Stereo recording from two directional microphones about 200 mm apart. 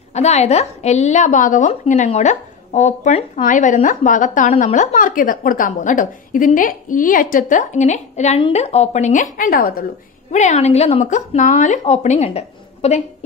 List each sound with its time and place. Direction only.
0.1 s a woman's voice: 35° left (ahead or behind)
10.3 s a woman's voice: 35° left (ahead or behind)